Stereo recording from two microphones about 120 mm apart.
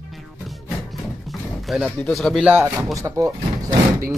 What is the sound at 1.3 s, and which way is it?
Speech, centre (ahead or behind).